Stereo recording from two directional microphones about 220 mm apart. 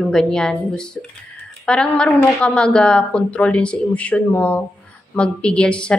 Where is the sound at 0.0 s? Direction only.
Centre (ahead or behind).